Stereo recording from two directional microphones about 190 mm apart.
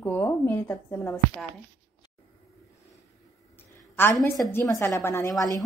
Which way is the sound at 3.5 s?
10° left (ahead or behind).